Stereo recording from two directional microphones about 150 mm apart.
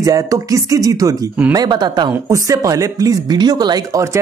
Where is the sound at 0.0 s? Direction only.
25° right (ahead or behind).